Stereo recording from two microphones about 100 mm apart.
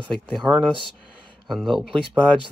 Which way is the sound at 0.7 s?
55° right (ahead or behind).